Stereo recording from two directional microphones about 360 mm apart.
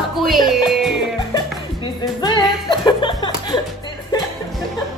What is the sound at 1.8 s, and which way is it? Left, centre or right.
Speech, centre.